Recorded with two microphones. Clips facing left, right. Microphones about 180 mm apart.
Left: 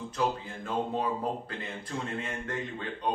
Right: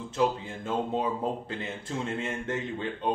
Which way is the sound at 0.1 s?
25° right (ahead or behind).